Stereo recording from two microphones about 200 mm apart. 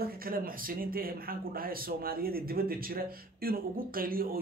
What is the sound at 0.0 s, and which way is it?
Speech, 45° right (ahead or behind).